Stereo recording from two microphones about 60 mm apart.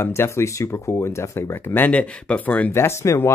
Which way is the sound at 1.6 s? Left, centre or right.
Left.